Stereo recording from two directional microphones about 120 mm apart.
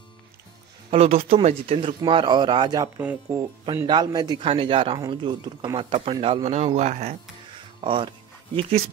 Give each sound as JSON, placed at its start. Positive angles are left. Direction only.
{"t": 0.8, "sound": "speech", "side_deg": -60}
{"t": 3.0, "sound": "speech", "side_deg": -15}
{"t": 3.8, "sound": "a man's voice", "side_deg": -35}
{"t": 4.5, "sound": "a man's voice", "side_deg": -50}
{"t": 7.8, "sound": "speech", "side_deg": -45}
{"t": 8.5, "sound": "speech", "side_deg": -55}